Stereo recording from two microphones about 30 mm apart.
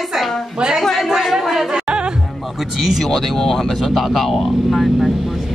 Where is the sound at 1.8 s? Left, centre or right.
Right.